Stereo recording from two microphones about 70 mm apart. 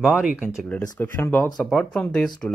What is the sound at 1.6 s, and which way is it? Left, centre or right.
Speech, centre.